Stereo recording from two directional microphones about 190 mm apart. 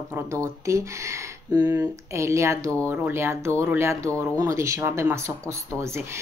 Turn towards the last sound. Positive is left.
turn(degrees=-15)  # may be behind; listen again after turning